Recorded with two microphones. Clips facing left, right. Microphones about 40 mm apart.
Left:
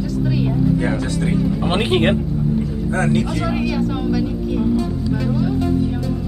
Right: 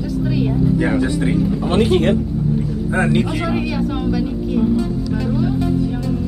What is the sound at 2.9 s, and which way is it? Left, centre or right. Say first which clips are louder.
Speech: right 2 dB; centre.